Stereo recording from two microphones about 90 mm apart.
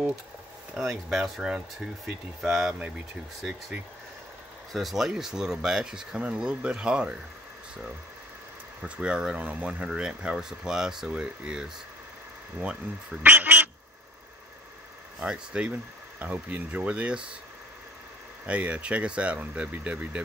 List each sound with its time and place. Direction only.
0.7 s speech: 5° right (ahead or behind)
4.7 s speech: centre (ahead or behind)
8.8 s speech: 10° right (ahead or behind)
15.1 s speech: 10° right (ahead or behind)
18.5 s speech: 15° right (ahead or behind)